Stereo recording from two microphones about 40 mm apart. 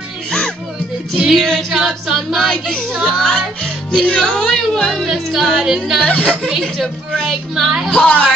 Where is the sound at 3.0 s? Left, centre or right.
Centre.